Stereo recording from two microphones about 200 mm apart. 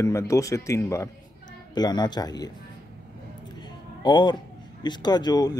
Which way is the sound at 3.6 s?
20° left (ahead or behind).